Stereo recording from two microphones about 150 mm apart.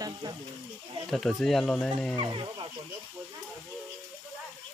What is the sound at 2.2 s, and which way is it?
Speech, 30° right (ahead or behind).